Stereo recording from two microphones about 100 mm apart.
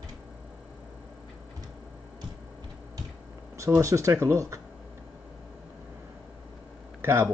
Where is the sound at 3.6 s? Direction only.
30° right (ahead or behind).